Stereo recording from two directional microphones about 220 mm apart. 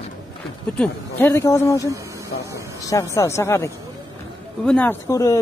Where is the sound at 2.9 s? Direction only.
15° left (ahead or behind).